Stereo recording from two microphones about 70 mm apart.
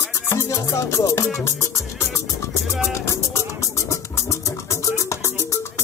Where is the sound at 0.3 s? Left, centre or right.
Left.